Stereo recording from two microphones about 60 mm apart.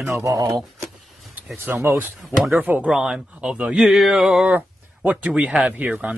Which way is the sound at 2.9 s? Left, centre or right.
Centre.